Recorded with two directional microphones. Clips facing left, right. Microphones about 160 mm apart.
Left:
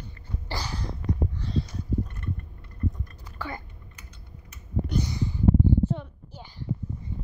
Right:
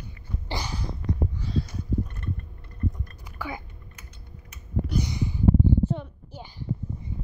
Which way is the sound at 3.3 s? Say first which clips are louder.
Right 1 dB; 10° right (ahead or behind).